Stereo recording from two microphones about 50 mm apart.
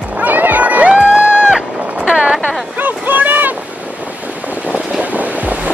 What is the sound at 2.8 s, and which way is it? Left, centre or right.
Boat, right.